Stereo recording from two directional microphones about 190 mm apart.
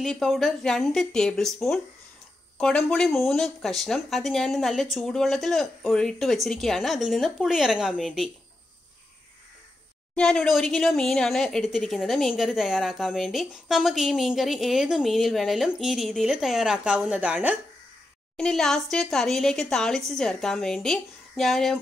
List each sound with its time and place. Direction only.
0.0 s speech: centre (ahead or behind)
10.1 s speech: 5° left (ahead or behind)